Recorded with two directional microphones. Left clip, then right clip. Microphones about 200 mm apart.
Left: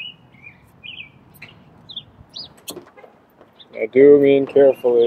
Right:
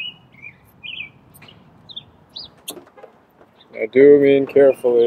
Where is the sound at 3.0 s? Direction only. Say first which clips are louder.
Right 2 dB; 45° left (ahead or behind).